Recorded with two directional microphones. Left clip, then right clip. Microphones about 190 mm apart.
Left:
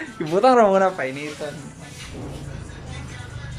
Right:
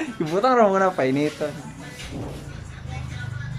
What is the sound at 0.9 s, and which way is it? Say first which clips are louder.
Speech: right 5 dB; 25° right (ahead or behind).